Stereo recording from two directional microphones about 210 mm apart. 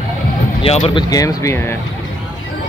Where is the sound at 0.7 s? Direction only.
25° left (ahead or behind).